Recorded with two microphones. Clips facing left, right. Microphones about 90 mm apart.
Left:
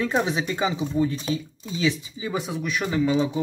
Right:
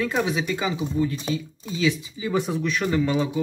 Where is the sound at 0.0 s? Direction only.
30° left (ahead or behind).